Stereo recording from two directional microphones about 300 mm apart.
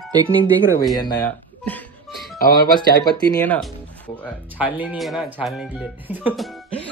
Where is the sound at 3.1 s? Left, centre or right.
Centre.